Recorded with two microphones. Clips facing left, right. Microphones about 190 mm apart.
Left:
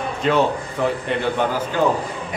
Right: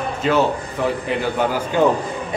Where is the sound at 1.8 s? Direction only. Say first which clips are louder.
Right 3 dB; 20° right (ahead or behind).